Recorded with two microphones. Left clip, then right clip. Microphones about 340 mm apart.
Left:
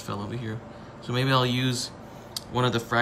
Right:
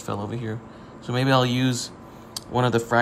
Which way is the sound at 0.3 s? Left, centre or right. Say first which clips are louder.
Right 3 dB; centre.